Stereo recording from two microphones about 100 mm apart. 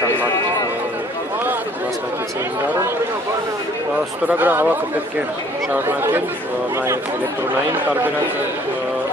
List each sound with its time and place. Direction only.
4.3 s speech: 20° right (ahead or behind)
5.7 s speech: 20° right (ahead or behind)